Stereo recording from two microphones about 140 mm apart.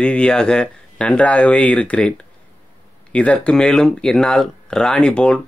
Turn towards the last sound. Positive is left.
turn(degrees=5)  # may be behind; listen again after turning